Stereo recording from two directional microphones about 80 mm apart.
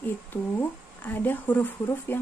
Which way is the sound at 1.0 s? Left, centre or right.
Left.